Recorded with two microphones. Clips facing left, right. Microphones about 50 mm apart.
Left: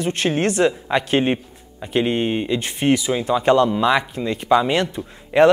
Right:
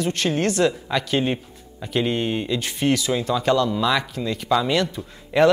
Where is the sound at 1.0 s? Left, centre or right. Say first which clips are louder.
Left 3 dB; left.